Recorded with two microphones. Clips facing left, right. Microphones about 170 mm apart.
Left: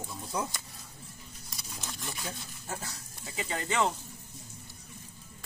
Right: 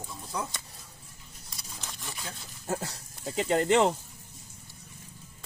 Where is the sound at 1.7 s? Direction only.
Centre (ahead or behind).